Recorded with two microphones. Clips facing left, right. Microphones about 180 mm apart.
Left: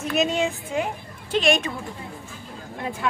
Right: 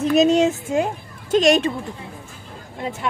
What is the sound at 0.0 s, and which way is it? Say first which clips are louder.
A woman's voice: right 8 dB; 35° right (ahead or behind).